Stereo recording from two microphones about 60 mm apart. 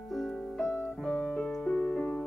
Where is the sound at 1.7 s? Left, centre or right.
Centre.